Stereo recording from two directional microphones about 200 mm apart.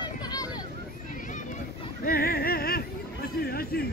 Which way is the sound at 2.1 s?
50° left (ahead or behind).